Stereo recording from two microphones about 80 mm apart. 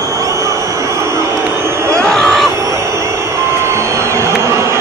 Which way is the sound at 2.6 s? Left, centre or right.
Right.